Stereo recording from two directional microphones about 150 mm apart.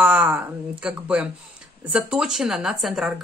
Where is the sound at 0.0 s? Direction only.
10° right (ahead or behind).